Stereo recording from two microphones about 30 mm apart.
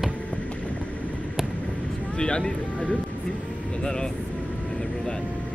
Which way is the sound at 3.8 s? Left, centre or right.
Left.